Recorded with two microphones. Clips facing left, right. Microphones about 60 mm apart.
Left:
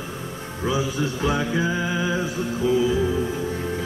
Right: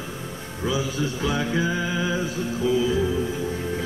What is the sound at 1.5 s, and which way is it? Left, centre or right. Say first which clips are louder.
Music: left 1 dB; centre.